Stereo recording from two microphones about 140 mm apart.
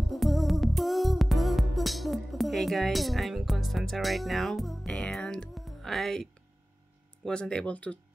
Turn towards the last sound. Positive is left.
turn(degrees=10)  # may be behind; listen again after turning